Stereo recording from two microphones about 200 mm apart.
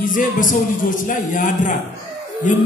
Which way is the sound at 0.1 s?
40° left (ahead or behind).